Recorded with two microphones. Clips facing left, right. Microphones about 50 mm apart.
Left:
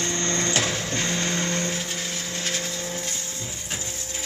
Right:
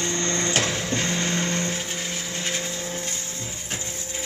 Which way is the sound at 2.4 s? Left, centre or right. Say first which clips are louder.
Even; right.